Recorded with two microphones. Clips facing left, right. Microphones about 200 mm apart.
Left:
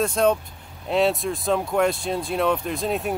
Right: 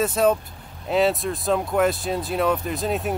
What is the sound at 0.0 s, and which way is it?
Speech, 5° right (ahead or behind).